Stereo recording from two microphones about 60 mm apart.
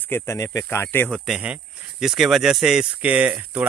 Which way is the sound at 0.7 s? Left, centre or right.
Left.